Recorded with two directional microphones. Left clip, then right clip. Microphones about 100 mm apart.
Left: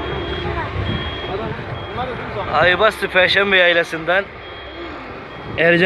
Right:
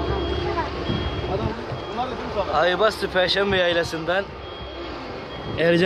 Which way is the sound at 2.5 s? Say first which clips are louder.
Left 6 dB; 30° left (ahead or behind).